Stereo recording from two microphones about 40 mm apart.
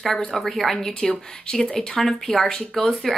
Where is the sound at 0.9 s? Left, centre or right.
Centre.